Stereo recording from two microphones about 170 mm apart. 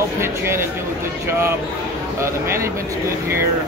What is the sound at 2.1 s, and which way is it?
Speech, 15° right (ahead or behind).